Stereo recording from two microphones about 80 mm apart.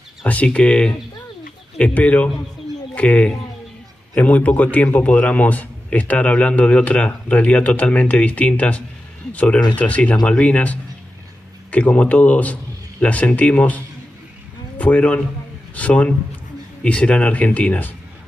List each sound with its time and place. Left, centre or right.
0.2 s a man's voice: centre